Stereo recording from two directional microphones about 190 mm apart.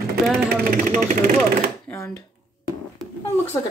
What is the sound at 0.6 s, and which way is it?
Speech, 50° right (ahead or behind).